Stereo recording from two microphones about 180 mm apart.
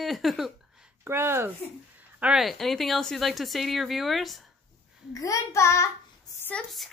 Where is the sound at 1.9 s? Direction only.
5° right (ahead or behind).